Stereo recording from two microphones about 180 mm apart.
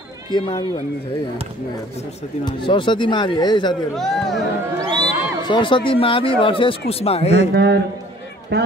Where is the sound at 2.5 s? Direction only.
25° left (ahead or behind).